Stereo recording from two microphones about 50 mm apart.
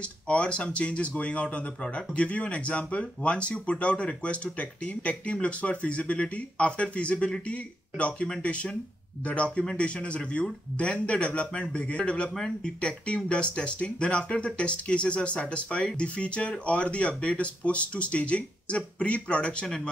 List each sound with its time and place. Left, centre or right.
0.3 s speech: left